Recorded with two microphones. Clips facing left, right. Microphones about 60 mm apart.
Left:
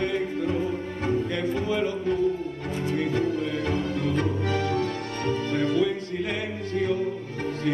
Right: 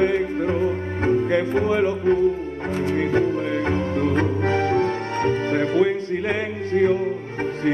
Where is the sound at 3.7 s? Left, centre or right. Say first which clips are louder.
Right 5 dB; right.